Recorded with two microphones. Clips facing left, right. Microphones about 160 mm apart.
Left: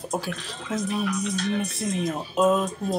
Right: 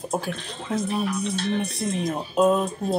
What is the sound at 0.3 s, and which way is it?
Speech, 30° right (ahead or behind).